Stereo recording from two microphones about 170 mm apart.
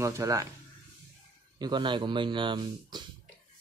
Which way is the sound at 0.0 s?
20° right (ahead or behind).